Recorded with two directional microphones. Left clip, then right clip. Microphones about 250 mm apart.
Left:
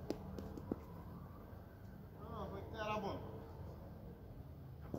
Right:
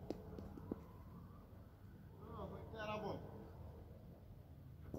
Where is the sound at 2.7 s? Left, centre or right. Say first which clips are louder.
Left 4 dB; centre.